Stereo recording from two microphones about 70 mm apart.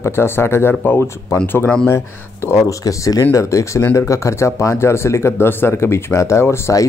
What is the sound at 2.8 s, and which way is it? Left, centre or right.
Speech, left.